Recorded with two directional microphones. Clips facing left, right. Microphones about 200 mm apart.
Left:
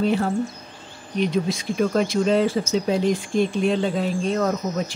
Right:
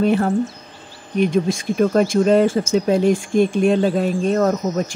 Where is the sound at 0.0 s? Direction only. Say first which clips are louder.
Right 4 dB; 55° right (ahead or behind).